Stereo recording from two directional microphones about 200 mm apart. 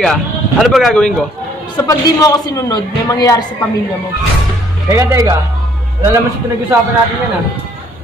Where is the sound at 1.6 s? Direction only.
20° left (ahead or behind).